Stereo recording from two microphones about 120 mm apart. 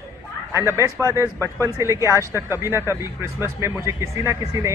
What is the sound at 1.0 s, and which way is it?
A man's voice, 25° right (ahead or behind).